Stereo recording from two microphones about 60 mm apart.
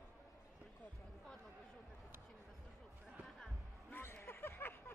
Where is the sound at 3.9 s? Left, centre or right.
Left.